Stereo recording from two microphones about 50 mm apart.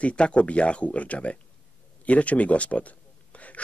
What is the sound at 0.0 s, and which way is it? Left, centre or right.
A man's voice, left.